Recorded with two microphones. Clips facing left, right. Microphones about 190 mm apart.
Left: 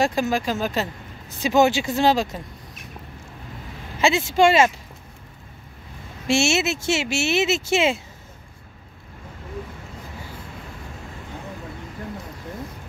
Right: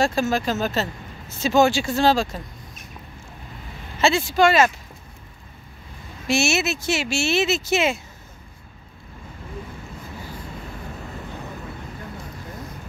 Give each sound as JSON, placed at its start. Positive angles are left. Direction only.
{"t": 0.0, "sound": "speech", "side_deg": 15}
{"t": 4.0, "sound": "speech", "side_deg": 20}
{"t": 6.2, "sound": "speech", "side_deg": 25}